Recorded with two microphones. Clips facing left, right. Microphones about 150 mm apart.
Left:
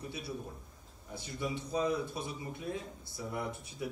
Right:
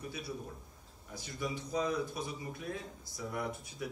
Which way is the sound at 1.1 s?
25° left (ahead or behind).